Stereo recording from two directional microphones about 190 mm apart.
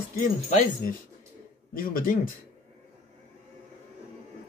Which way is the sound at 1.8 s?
45° left (ahead or behind).